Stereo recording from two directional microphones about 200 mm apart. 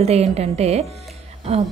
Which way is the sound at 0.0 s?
30° right (ahead or behind).